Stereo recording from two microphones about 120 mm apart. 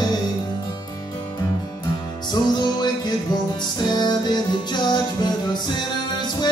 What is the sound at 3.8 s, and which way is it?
Music, 35° left (ahead or behind).